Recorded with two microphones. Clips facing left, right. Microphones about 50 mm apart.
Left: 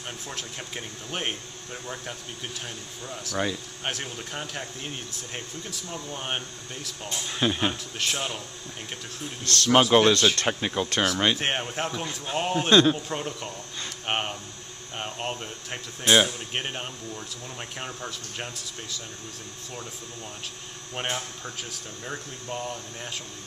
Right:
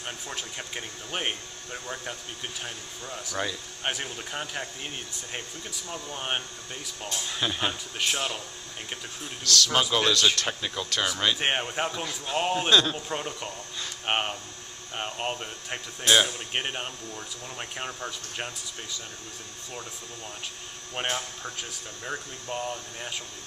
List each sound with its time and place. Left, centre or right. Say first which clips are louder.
0.3 s a man's voice: even; centre
7.2 s speech: left 4 dB; centre
8.0 s speech: right 1 dB; centre
9.4 s a man's voice: left 4 dB; left
11.3 s a man's voice: right 1 dB; centre
16.0 s speech: left 2 dB; centre
16.3 s speech: even; centre
20.9 s speech: even; centre